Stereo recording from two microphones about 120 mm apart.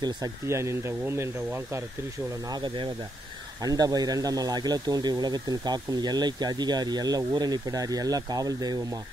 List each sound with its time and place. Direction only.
0.0 s speech: 25° right (ahead or behind)
2.5 s a man's voice: 40° right (ahead or behind)